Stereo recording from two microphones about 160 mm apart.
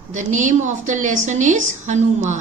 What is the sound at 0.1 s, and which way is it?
A woman's voice, 50° right (ahead or behind).